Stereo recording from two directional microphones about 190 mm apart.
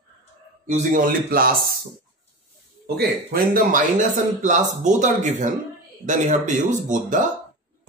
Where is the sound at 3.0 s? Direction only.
50° right (ahead or behind).